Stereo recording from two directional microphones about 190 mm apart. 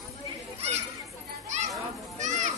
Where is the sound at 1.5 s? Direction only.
40° right (ahead or behind).